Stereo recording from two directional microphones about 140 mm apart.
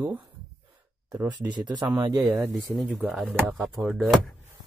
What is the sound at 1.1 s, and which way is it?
Speech, 30° right (ahead or behind).